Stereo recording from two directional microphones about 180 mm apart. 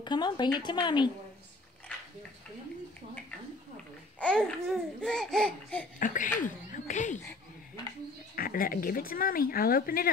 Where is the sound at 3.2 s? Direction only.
5° left (ahead or behind).